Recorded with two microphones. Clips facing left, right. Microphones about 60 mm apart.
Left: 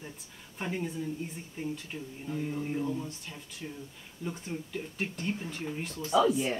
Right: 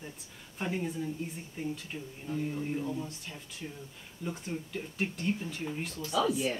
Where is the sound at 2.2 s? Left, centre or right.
Centre.